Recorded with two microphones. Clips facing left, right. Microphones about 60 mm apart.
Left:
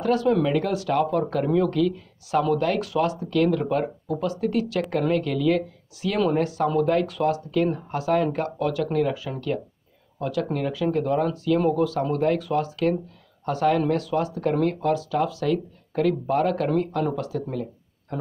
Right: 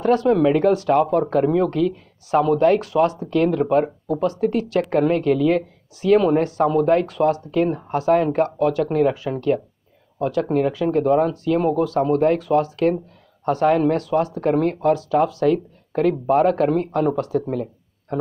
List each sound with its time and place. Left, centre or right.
0.0 s speech: right
6.4 s speech: right